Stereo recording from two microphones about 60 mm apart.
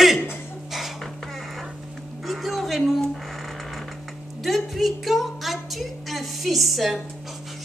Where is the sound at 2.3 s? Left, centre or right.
Centre.